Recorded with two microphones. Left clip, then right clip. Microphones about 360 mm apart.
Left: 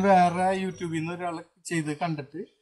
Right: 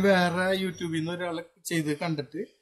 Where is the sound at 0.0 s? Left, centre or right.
Centre.